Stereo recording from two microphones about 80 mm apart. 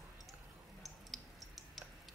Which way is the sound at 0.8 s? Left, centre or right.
Centre.